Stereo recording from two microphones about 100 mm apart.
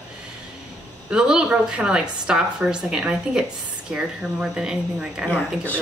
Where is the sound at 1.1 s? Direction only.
10° right (ahead or behind).